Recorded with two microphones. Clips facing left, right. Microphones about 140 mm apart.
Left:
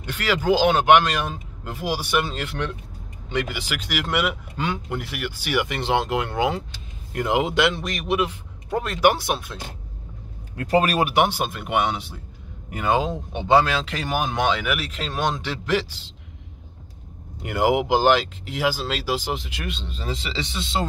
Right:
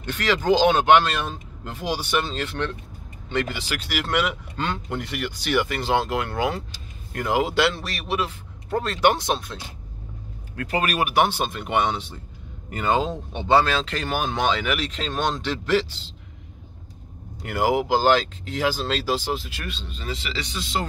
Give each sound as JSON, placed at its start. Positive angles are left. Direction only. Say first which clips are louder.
{"t": 0.0, "sound": "speech", "louder": "even", "side_deg": 10}
{"t": 10.5, "sound": "speech", "louder": "left 5 dB", "side_deg": 25}
{"t": 11.2, "sound": "speech", "louder": "even", "side_deg": 10}
{"t": 17.4, "sound": "speech", "louder": "left 1 dB", "side_deg": 20}